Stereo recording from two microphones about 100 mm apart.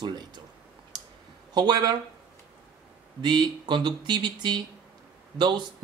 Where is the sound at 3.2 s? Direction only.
50° right (ahead or behind).